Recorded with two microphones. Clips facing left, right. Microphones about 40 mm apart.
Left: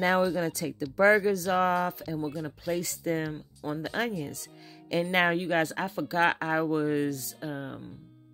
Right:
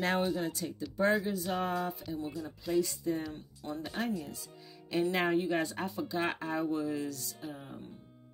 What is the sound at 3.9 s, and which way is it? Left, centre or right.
Speech, left.